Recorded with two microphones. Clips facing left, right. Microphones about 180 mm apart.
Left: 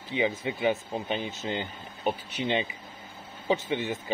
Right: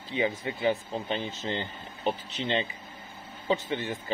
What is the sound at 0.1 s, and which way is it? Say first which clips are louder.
Speech: left 1 dB; 20° left (ahead or behind).